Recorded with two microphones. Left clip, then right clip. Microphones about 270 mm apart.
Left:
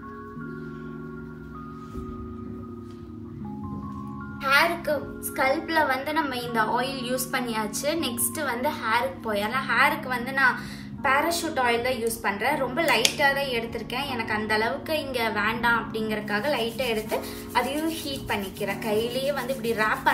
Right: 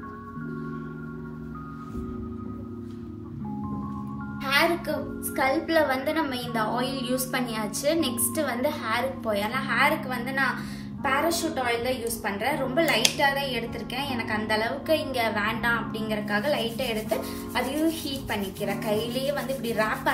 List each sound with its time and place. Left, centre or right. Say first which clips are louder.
4.4 s a woman's voice: left 2 dB; centre